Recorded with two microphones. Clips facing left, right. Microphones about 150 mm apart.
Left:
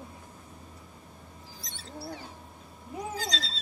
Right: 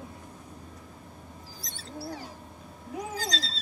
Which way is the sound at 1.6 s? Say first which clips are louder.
Right 2 dB; 40° right (ahead or behind).